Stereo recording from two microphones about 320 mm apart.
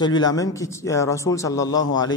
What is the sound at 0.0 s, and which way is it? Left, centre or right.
Speech, centre.